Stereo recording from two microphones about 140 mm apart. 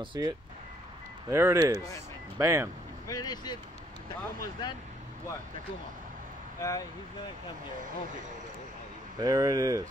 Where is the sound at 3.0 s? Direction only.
25° left (ahead or behind).